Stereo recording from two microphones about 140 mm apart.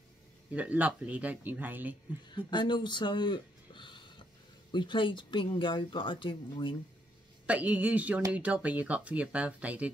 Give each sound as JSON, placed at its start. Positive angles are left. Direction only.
{"t": 0.5, "sound": "speech", "side_deg": -10}
{"t": 2.3, "sound": "speech", "side_deg": 35}
{"t": 7.4, "sound": "speech", "side_deg": -10}